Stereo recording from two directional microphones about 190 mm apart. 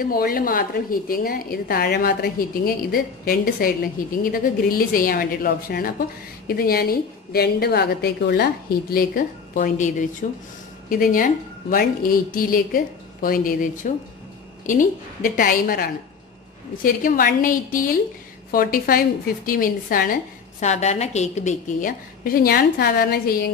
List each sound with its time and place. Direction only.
0.0 s a woman's voice: 50° left (ahead or behind)
20.6 s a woman's voice: 35° left (ahead or behind)